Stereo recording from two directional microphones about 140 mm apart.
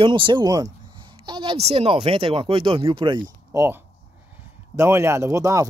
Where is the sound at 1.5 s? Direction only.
45° right (ahead or behind).